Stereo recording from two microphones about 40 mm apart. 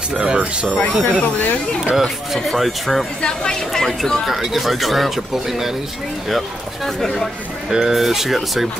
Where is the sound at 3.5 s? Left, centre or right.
Centre.